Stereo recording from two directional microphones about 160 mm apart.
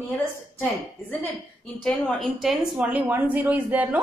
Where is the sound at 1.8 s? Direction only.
Centre (ahead or behind).